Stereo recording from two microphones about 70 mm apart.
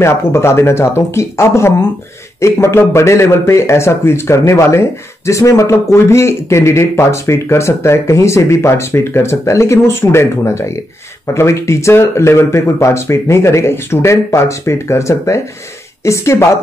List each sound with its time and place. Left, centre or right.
0.0 s speech: left